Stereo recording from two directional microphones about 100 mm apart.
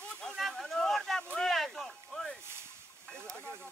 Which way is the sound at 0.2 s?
5° left (ahead or behind).